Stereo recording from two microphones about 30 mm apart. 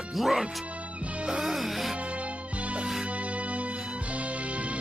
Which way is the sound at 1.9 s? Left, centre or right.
Right.